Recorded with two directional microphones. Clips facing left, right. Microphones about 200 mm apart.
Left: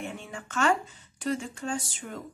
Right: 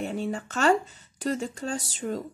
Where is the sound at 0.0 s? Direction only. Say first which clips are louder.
Right 8 dB; 35° right (ahead or behind).